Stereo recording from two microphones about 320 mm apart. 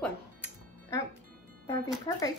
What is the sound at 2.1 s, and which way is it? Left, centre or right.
Speech, centre.